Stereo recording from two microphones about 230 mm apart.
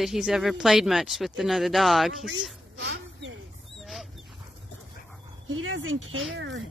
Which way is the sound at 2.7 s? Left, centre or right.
Right.